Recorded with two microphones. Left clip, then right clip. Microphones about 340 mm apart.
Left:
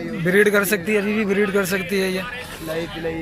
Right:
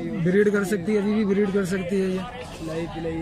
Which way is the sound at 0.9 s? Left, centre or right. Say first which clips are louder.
Left 3 dB; left.